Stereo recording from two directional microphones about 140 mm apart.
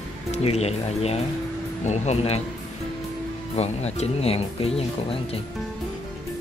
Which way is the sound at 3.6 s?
50° left (ahead or behind).